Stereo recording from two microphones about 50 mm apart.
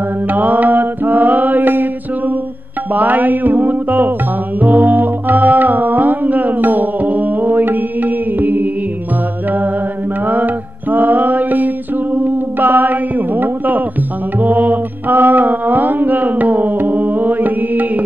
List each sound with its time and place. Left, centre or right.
0.3 s mantra: right
2.9 s music: right
10.2 s mantra: right